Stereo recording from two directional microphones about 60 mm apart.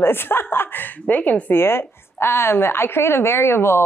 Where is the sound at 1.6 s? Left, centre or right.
Left.